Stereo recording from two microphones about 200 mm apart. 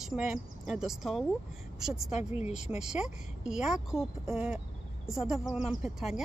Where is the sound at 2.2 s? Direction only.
35° left (ahead or behind).